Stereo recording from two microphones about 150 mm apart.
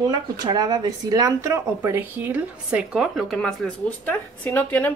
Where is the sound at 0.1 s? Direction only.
25° right (ahead or behind).